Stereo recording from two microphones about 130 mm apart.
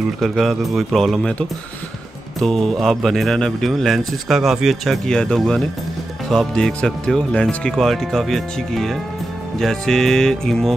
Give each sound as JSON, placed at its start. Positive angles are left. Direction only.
{"t": 0.2, "sound": "speech", "side_deg": 0}
{"t": 2.4, "sound": "speech", "side_deg": 0}